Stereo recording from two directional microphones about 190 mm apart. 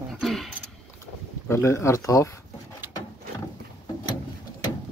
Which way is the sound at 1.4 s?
15° left (ahead or behind).